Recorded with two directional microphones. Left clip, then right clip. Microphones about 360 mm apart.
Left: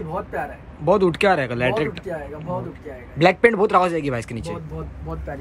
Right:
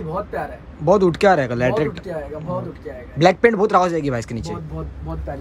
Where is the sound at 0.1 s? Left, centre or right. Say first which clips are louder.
Right 2 dB; centre.